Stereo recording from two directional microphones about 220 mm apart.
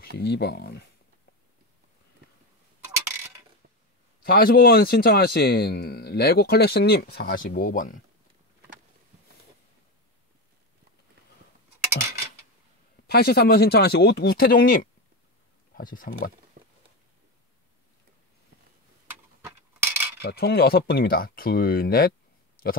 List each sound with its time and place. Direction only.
0.2 s a man's voice: 50° left (ahead or behind)
4.2 s a man's voice: 45° left (ahead or behind)
13.0 s a man's voice: 45° left (ahead or behind)
16.6 s a sound: 50° right (ahead or behind)
19.4 s a sound: 10° right (ahead or behind)
20.2 s a man's voice: 45° left (ahead or behind)